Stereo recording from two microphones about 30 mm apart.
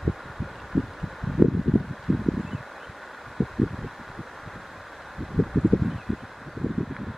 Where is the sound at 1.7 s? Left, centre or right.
Centre.